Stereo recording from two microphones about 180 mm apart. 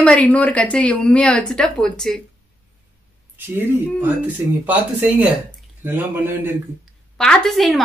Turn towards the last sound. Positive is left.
turn(degrees=0)  # may be behind; listen again after turning